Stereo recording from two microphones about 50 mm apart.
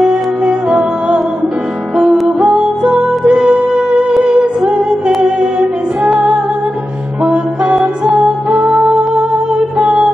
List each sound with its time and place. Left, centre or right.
0.0 s music: right
3.0 s music: right
4.2 s humming: centre
6.0 s music: centre